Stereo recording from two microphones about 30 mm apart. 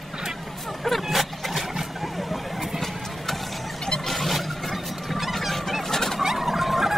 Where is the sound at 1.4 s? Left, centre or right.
Centre.